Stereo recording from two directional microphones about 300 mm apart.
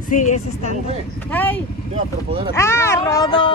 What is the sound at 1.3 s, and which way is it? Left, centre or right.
Speech, centre.